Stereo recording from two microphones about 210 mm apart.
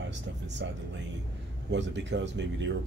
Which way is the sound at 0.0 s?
55° right (ahead or behind).